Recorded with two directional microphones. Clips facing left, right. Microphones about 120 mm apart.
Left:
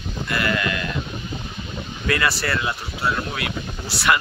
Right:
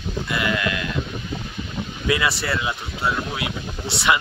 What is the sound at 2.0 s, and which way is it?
Speech, 15° right (ahead or behind).